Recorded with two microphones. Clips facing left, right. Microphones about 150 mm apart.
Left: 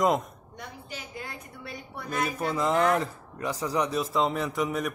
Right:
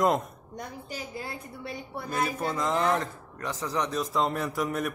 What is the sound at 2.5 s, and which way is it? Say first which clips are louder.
Speech: left 4 dB; 5° left (ahead or behind).